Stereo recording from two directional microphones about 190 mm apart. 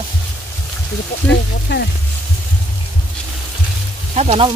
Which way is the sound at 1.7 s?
65° left (ahead or behind).